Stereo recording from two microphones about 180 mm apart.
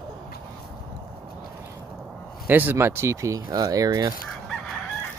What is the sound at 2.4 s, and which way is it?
Speech, 10° right (ahead or behind).